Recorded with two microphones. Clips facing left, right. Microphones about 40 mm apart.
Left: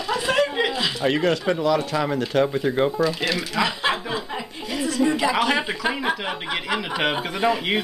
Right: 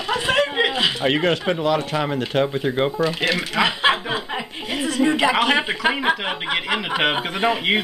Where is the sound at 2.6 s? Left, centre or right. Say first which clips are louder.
Even; centre.